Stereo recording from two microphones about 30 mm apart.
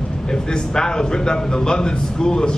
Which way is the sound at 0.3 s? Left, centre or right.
Left.